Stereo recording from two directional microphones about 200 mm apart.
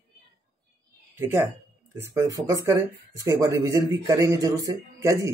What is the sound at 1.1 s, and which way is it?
Speech, 10° right (ahead or behind).